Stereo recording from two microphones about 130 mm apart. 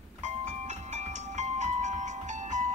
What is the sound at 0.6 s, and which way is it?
Music, 65° right (ahead or behind).